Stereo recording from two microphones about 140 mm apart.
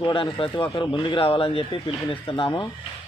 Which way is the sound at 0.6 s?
25° left (ahead or behind).